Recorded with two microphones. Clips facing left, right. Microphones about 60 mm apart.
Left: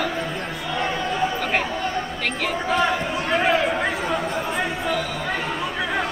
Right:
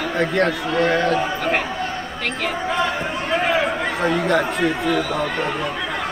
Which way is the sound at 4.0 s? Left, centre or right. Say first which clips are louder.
Right 6 dB; right.